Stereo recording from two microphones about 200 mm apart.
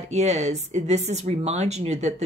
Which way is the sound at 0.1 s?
35° right (ahead or behind).